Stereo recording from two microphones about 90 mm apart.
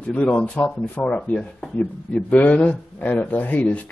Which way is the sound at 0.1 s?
15° left (ahead or behind).